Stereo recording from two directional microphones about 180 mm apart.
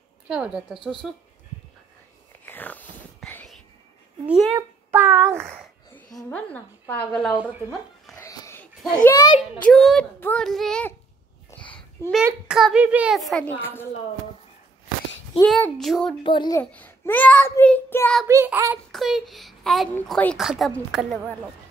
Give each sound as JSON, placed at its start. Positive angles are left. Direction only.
{"t": 0.3, "sound": "a child's voice", "side_deg": -5}
{"t": 2.4, "sound": "whispering", "side_deg": 10}
{"t": 4.3, "sound": "a child's voice", "side_deg": -5}
{"t": 4.6, "sound": "child singing", "side_deg": -10}
{"t": 6.1, "sound": "a child's voice", "side_deg": 10}
{"t": 8.1, "sound": "a sound", "side_deg": 15}
{"t": 9.6, "sound": "a child's voice", "side_deg": 0}
{"t": 12.4, "sound": "a child's voice", "side_deg": -5}
{"t": 15.4, "sound": "a child's voice", "side_deg": 0}
{"t": 16.3, "sound": "a child's voice", "side_deg": 25}
{"t": 16.7, "sound": "a child's voice", "side_deg": 10}
{"t": 18.2, "sound": "a child's voice", "side_deg": -15}
{"t": 18.9, "sound": "a child's voice", "side_deg": 0}